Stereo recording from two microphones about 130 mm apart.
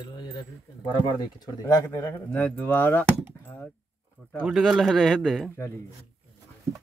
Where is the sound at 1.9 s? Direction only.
15° left (ahead or behind).